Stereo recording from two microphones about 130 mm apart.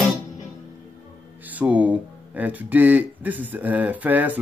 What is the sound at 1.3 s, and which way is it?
Speech, 10° right (ahead or behind).